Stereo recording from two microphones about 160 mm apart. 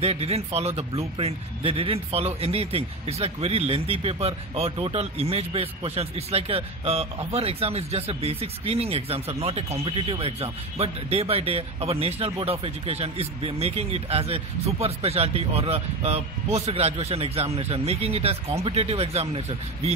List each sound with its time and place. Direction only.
0.0 s speech: 40° right (ahead or behind)